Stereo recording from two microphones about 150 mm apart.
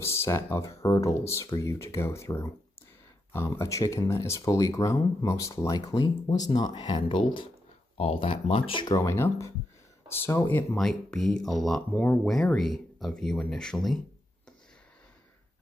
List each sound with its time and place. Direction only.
0.0 s speech: 15° left (ahead or behind)
10.8 s speech: centre (ahead or behind)